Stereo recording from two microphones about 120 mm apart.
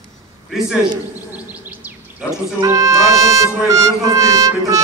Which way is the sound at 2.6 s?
25° right (ahead or behind).